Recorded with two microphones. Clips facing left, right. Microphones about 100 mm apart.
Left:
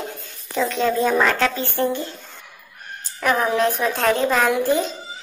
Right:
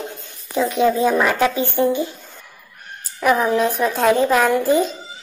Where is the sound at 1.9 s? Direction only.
15° right (ahead or behind).